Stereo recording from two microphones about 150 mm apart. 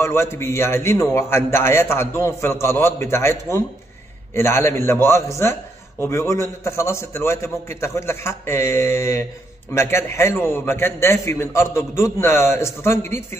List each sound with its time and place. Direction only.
0.0 s a man's voice: 20° left (ahead or behind)